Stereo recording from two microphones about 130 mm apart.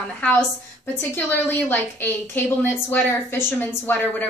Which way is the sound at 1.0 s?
15° left (ahead or behind).